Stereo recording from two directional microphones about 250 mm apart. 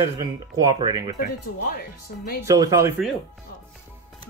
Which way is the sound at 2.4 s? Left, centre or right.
Centre.